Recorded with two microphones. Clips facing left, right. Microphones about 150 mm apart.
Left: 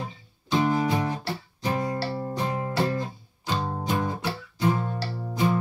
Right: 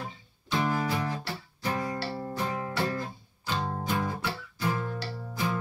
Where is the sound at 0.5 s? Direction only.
25° left (ahead or behind).